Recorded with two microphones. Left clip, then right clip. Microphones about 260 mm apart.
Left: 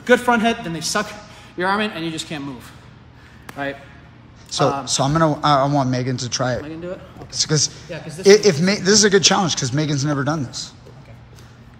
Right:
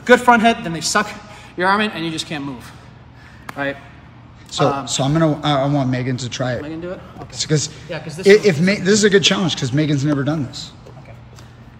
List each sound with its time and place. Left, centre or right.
0.3 s a man's voice: centre
3.4 s a sound: centre
4.5 s a man's voice: centre
6.6 s speech: centre
7.2 s a man's voice: centre